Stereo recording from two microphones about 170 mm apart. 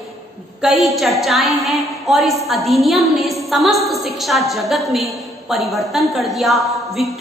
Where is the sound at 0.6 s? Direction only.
Centre (ahead or behind).